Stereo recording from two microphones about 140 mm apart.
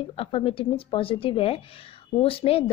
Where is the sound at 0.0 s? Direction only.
45° left (ahead or behind).